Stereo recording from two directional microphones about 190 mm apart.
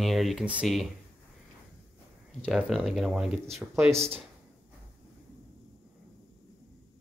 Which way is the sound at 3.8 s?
35° right (ahead or behind).